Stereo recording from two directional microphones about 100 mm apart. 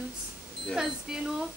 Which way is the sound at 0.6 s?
5° right (ahead or behind).